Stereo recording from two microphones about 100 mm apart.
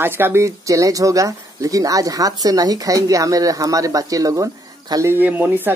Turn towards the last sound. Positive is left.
turn(degrees=-20)  # may be behind; listen again after turning